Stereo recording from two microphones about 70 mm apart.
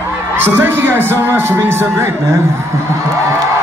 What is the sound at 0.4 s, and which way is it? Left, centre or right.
A man's voice, right.